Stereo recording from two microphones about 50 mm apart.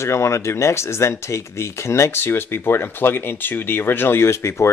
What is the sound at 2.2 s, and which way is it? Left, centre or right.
Speech, left.